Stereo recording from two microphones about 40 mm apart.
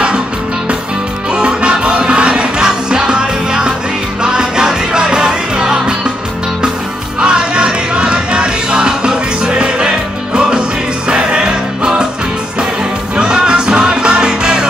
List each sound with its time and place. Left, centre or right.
1.3 s music: right
7.2 s music: right
13.1 s music: right